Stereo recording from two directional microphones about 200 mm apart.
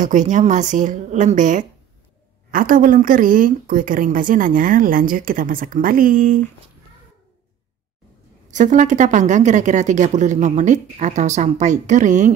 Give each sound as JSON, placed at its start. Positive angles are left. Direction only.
{"t": 0.0, "sound": "a woman's voice", "side_deg": -40}
{"t": 8.5, "sound": "speech", "side_deg": -40}